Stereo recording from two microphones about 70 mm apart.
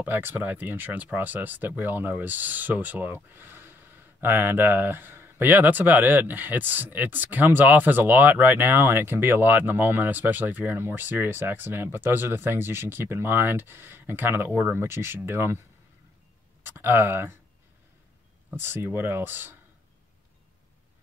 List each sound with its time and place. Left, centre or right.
0.0 s speech: right
16.6 s speech: right
18.6 s speech: right